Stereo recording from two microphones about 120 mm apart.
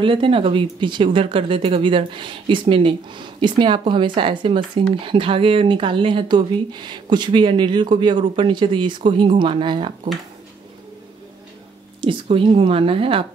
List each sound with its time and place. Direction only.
0.0 s speech: 45° right (ahead or behind)
12.0 s speech: 50° right (ahead or behind)